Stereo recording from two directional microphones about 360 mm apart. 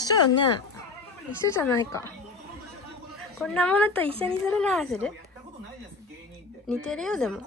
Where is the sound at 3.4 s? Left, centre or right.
Centre.